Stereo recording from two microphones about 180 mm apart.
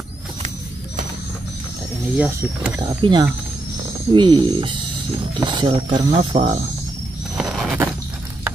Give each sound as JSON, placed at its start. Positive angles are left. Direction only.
{"t": 2.1, "sound": "speech", "side_deg": -10}
{"t": 2.8, "sound": "speech", "side_deg": -25}
{"t": 6.3, "sound": "speech", "side_deg": -40}
{"t": 7.3, "sound": "a sound", "side_deg": 0}